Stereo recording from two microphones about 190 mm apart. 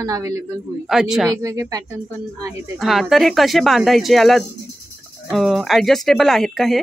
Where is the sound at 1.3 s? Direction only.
15° right (ahead or behind).